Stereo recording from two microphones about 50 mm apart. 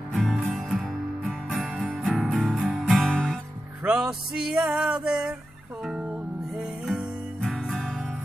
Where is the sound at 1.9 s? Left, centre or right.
Centre.